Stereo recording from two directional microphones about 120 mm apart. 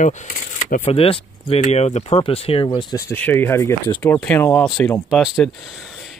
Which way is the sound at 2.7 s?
35° left (ahead or behind).